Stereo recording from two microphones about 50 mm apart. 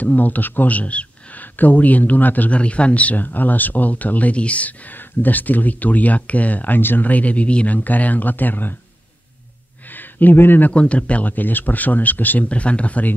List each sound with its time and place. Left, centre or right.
0.0 s speech: left
9.8 s a sound: left
10.7 s speech: left
12.4 s speech: left